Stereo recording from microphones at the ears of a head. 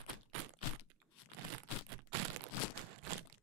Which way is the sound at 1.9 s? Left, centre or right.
Right.